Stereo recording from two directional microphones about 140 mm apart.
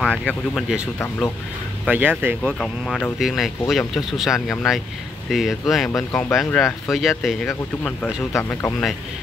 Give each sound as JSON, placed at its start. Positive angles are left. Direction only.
{"t": 0.0, "sound": "speech", "side_deg": 10}
{"t": 1.9, "sound": "speech", "side_deg": -10}
{"t": 2.4, "sound": "speech", "side_deg": 5}
{"t": 5.9, "sound": "speech", "side_deg": 15}
{"t": 6.3, "sound": "speech", "side_deg": 0}
{"t": 8.2, "sound": "speech", "side_deg": 20}